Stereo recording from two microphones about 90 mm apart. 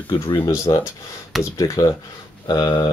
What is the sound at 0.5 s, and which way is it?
Speech, 40° left (ahead or behind).